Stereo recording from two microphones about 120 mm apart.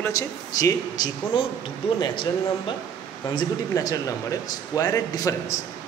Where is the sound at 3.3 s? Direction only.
30° left (ahead or behind).